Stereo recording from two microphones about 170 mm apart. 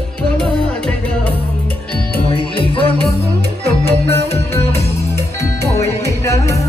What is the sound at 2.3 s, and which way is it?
Music, 30° left (ahead or behind).